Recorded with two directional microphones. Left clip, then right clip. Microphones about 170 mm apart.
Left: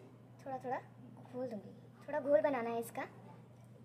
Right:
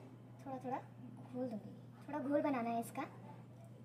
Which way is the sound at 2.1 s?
55° left (ahead or behind).